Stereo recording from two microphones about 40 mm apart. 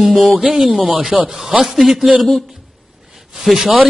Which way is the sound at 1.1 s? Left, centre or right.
Right.